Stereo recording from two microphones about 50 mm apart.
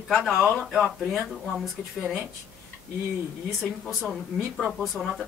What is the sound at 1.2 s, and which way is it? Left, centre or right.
Speech, centre.